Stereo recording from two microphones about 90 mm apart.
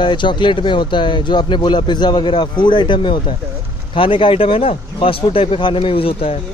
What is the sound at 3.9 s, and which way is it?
Speech, 75° left (ahead or behind).